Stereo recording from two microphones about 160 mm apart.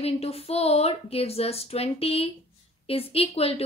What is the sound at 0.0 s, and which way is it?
A woman's voice, 40° left (ahead or behind).